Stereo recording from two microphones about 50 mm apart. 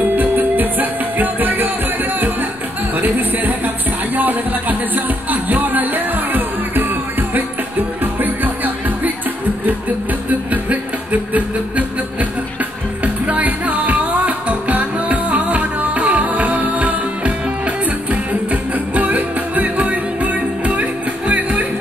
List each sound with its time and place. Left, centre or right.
0.1 s music: right
3.0 s music: right
10.5 s a sound: right
13.0 s music: right